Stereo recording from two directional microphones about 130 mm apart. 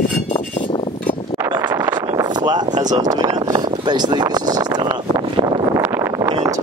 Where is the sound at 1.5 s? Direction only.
35° right (ahead or behind).